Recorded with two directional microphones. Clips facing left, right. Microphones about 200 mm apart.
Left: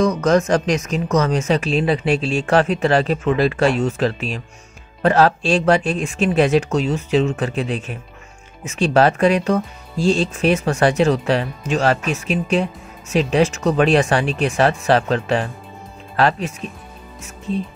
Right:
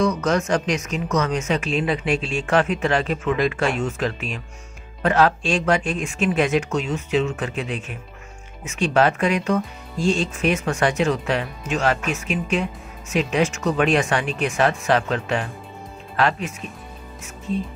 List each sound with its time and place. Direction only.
0.0 s speech: 40° left (ahead or behind)